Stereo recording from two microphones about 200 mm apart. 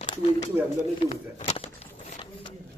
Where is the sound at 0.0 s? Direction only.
25° left (ahead or behind).